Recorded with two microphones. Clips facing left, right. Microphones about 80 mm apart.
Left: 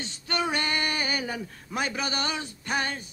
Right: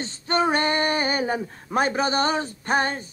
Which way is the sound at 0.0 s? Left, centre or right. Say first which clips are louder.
Right 7 dB; right.